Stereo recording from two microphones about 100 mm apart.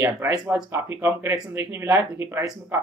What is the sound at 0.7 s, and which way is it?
Speech, 25° right (ahead or behind).